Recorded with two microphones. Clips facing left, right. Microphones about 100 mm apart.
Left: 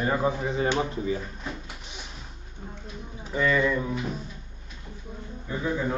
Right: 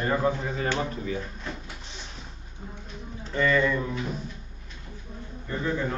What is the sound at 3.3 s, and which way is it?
Speech, 10° left (ahead or behind).